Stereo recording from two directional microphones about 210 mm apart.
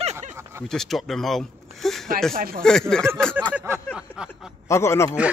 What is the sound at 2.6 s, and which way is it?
Speech, 5° left (ahead or behind).